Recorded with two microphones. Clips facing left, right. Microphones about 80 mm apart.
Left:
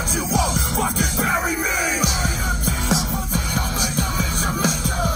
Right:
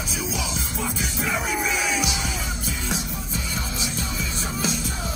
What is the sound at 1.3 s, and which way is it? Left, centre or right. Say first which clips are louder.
Music: left 3 dB; left.